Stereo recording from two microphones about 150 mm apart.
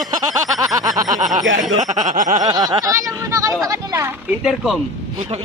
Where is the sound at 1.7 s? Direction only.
55° right (ahead or behind).